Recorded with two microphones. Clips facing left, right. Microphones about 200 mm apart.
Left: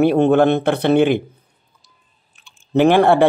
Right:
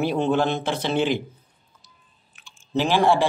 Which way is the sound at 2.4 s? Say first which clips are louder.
Left 10 dB; 60° left (ahead or behind).